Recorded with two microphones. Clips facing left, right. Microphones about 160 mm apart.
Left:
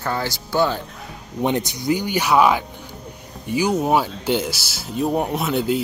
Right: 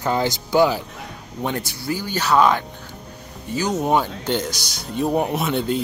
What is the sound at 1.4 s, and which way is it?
Speech, 20° left (ahead or behind).